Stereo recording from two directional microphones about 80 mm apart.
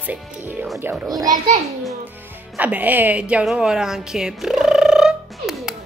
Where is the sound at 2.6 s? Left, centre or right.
Right.